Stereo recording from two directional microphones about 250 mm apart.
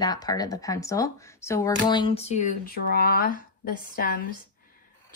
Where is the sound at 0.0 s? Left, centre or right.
Centre; by 4.2 s left.